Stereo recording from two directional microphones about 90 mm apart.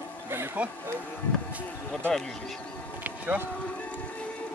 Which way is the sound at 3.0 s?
20° right (ahead or behind).